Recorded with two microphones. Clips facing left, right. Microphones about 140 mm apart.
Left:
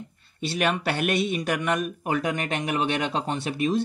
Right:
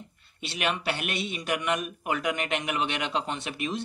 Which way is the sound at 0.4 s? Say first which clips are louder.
Left 5 dB; 40° left (ahead or behind).